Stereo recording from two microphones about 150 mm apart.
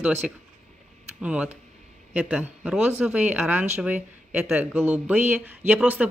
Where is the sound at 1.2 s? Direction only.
5° right (ahead or behind).